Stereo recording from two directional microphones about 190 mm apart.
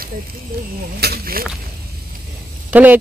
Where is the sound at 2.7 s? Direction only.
10° right (ahead or behind).